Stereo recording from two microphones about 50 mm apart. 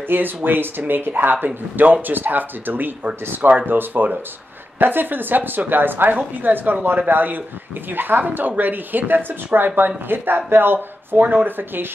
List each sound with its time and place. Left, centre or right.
0.1 s speech: right